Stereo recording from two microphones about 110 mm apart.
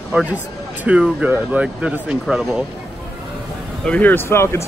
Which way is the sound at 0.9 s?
10° right (ahead or behind).